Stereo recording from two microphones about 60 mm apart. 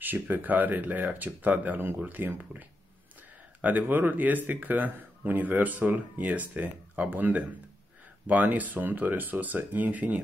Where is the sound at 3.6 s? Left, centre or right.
Right.